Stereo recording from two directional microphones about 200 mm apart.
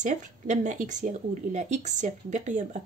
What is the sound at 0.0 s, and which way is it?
Speech, 35° right (ahead or behind).